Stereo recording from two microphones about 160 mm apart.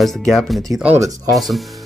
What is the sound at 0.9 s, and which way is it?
Speech, 20° right (ahead or behind).